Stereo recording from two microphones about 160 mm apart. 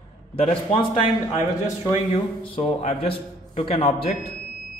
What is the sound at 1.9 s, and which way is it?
Speech, 35° left (ahead or behind).